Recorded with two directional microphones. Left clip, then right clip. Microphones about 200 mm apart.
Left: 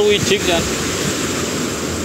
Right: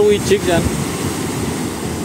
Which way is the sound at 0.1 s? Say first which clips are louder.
Right 1 dB; 25° right (ahead or behind).